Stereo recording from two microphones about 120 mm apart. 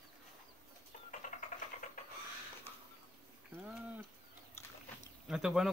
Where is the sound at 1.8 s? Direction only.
90° left.